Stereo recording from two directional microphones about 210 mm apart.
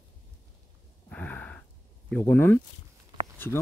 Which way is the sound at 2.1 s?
10° left (ahead or behind).